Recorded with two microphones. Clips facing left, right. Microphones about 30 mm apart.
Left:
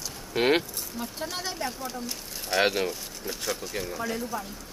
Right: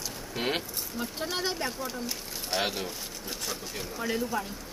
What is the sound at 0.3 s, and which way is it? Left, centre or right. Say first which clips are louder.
Speech: left 8 dB; left.